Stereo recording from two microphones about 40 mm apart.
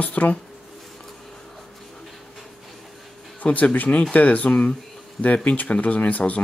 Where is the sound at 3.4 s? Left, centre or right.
Left.